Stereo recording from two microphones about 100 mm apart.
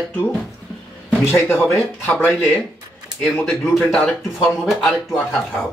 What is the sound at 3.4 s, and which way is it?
Speech, 5° left (ahead or behind).